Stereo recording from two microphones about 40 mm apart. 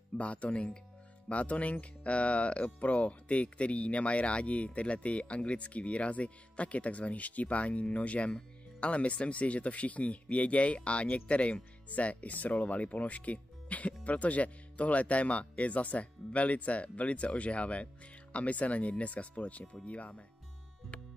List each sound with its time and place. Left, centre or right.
0.2 s speech: left